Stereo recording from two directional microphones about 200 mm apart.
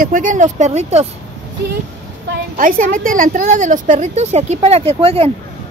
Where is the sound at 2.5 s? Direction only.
40° right (ahead or behind).